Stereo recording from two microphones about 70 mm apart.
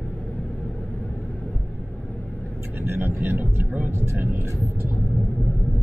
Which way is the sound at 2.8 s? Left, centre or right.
Right.